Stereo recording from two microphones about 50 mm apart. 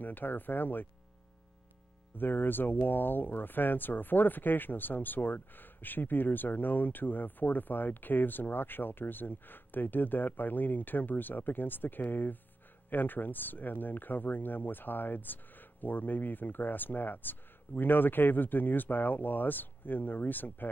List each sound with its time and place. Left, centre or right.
0.0 s speech: left
2.1 s speech: left